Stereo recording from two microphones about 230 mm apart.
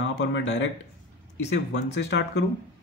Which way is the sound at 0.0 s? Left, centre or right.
Left.